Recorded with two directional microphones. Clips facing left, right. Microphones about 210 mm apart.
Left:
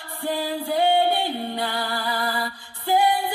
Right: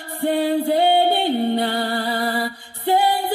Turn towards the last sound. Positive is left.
turn(degrees=-60)  # may be behind; listen again after turning